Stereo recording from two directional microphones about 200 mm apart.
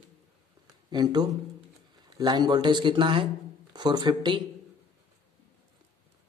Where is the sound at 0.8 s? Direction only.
20° right (ahead or behind).